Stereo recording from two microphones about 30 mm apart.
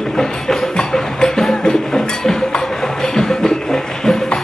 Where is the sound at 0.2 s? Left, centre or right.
Centre.